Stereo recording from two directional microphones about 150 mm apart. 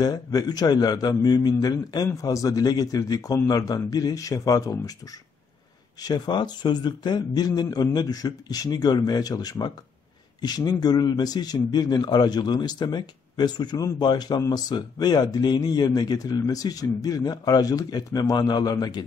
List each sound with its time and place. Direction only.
0.0 s speech: 25° left (ahead or behind)
5.9 s speech: 25° left (ahead or behind)